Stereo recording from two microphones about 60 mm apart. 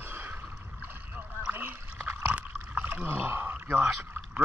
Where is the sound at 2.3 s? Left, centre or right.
Right.